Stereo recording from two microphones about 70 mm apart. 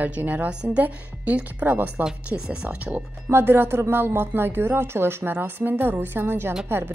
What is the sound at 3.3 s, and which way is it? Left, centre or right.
Speech, right.